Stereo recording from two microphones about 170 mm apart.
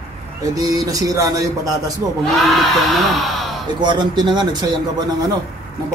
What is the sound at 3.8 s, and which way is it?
Speech, 25° right (ahead or behind).